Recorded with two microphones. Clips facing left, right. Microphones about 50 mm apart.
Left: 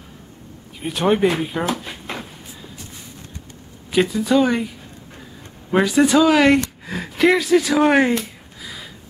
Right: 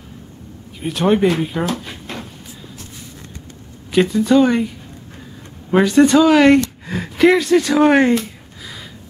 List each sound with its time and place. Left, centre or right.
0.8 s speech: centre
3.9 s speech: centre